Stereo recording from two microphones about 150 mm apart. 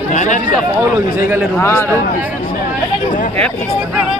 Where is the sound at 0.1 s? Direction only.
55° left (ahead or behind).